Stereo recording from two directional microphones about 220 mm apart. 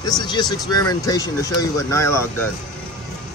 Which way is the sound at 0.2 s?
20° left (ahead or behind).